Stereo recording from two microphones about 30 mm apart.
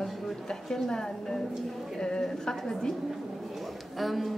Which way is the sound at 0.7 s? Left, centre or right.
Centre.